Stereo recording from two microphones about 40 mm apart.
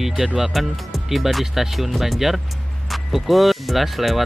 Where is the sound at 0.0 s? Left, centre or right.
Centre.